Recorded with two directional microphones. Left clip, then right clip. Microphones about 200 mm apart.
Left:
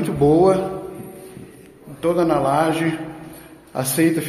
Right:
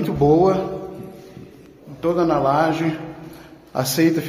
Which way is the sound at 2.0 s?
Centre (ahead or behind).